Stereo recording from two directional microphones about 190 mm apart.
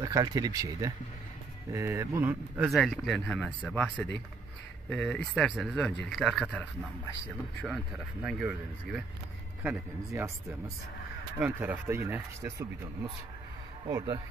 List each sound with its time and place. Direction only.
0.0 s speech: 20° right (ahead or behind)
2.7 s speech: centre (ahead or behind)
4.8 s speech: 5° left (ahead or behind)
11.3 s speech: 10° right (ahead or behind)